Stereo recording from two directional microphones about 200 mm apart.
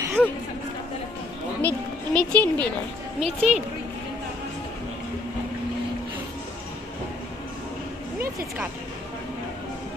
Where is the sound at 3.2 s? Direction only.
30° right (ahead or behind).